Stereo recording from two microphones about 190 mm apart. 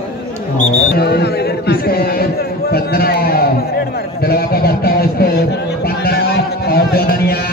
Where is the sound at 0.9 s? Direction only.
55° left (ahead or behind).